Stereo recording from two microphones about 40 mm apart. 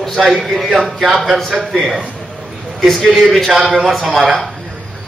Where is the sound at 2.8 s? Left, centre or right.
Centre.